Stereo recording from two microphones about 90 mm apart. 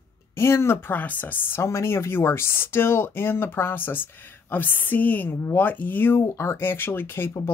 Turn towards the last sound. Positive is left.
turn(degrees=25)  # may be behind; listen again after turning